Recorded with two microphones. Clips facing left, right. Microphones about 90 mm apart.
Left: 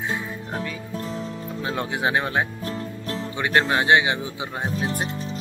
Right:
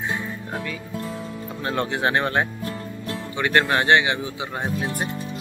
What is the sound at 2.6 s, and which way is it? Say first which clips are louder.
Music: left 1 dB; 20° right (ahead or behind).